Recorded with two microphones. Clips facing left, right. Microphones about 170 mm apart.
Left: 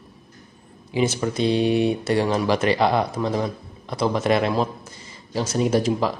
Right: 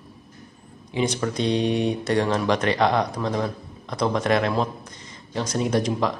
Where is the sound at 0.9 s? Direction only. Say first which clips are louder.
Left 2 dB; 5° left (ahead or behind).